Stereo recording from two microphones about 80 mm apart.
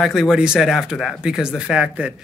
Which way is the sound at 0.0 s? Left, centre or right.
Centre.